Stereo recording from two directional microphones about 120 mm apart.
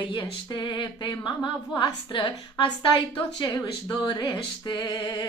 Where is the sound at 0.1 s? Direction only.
40° left (ahead or behind).